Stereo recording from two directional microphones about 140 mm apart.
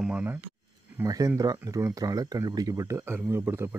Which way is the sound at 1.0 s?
25° right (ahead or behind).